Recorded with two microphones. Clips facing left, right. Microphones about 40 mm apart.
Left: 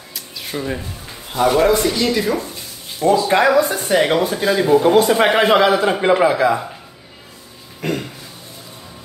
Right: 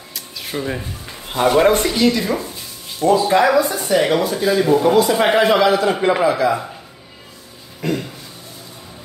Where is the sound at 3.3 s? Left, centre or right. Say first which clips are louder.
Even; left.